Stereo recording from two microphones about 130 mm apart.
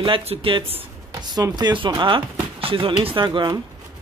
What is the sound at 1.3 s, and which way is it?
Speech, 35° right (ahead or behind).